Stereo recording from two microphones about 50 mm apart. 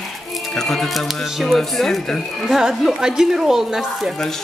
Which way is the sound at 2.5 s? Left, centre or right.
Centre.